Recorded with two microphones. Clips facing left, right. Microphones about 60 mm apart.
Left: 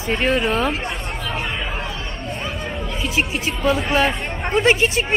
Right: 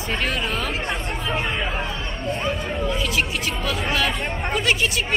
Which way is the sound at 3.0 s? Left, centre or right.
Left.